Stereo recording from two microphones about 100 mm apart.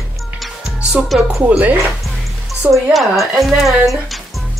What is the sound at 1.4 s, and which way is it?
Speech, 15° right (ahead or behind).